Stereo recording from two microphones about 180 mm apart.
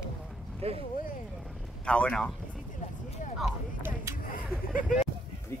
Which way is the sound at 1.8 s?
5° left (ahead or behind).